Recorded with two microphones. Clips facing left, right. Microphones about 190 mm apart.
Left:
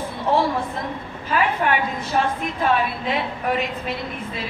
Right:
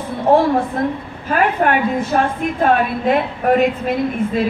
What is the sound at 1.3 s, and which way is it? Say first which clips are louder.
A woman's voice: right 5 dB; 50° right (ahead or behind).